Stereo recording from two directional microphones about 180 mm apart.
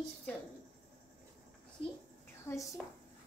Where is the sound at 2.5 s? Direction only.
20° left (ahead or behind).